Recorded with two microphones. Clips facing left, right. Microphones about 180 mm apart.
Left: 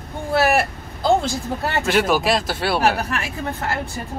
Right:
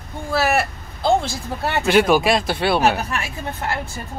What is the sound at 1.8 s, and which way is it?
Speech, centre (ahead or behind).